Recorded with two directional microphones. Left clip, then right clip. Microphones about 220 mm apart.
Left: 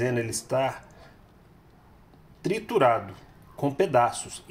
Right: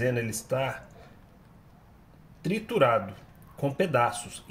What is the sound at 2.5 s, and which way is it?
Speech, 30° left (ahead or behind).